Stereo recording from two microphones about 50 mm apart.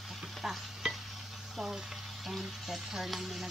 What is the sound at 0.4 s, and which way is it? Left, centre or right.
Stir, centre.